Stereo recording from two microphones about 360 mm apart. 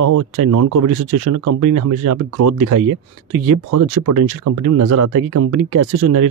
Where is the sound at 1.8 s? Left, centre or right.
Right.